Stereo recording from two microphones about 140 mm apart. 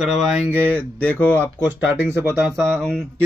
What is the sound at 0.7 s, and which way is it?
Speech, 10° left (ahead or behind).